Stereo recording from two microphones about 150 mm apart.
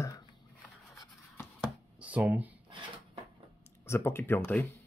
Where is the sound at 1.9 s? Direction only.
10° right (ahead or behind).